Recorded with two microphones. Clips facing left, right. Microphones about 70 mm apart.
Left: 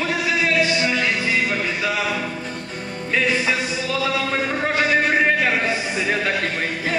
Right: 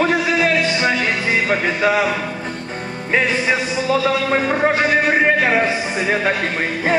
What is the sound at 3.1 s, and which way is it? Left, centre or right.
Music, right.